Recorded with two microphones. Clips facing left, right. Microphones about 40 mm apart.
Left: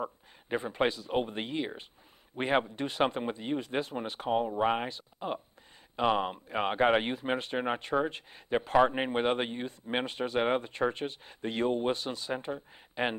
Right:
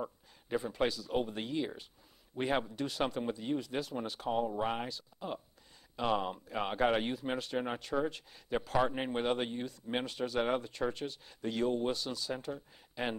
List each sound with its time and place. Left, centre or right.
0.0 s speech: left